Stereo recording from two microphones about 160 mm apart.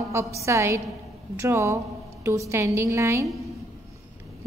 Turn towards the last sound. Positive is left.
turn(degrees=-15)  # may be behind; listen again after turning